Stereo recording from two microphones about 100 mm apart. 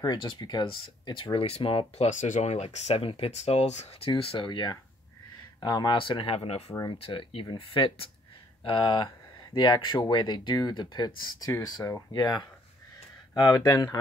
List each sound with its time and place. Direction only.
0.0 s speech: 45° left (ahead or behind); by 4.1 s 90° left
4.1 s speech: 60° left (ahead or behind)
4.5 s speech: 50° left (ahead or behind); by 6.6 s 80° left
7.0 s speech: 65° left (ahead or behind); by 12.0 s 35° left (ahead or behind)
12.1 s speech: 45° left (ahead or behind)